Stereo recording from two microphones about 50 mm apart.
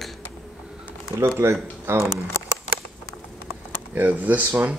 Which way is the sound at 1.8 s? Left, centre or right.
Right.